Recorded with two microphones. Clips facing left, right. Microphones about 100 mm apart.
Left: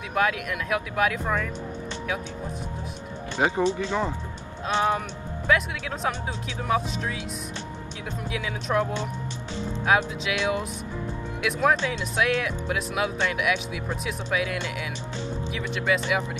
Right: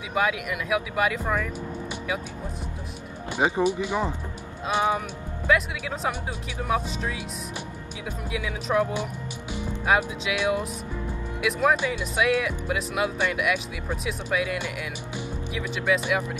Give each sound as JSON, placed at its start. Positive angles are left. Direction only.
{"t": 0.1, "sound": "speech", "side_deg": -5}
{"t": 3.3, "sound": "speech", "side_deg": -15}
{"t": 8.3, "sound": "speech", "side_deg": 0}
{"t": 9.8, "sound": "speech", "side_deg": -5}